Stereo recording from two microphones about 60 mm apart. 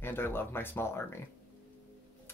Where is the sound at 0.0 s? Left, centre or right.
Left.